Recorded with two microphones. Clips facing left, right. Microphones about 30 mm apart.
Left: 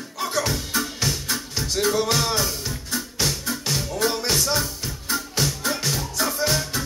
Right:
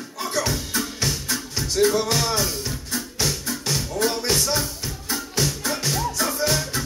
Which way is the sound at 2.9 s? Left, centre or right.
Centre.